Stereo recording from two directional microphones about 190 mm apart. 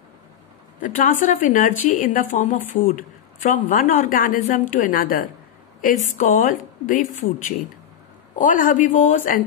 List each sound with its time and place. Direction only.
0.7 s a woman's voice: 45° left (ahead or behind)
8.4 s a woman's voice: 45° left (ahead or behind)